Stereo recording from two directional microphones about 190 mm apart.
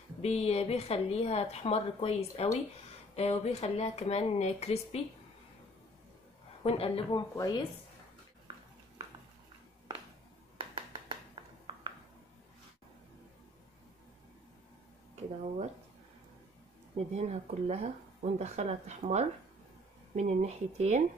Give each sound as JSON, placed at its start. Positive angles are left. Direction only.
{"t": 0.2, "sound": "a woman's voice", "side_deg": 35}
{"t": 6.6, "sound": "speech", "side_deg": 30}
{"t": 10.6, "sound": "a sound", "side_deg": -25}
{"t": 16.9, "sound": "speech", "side_deg": -35}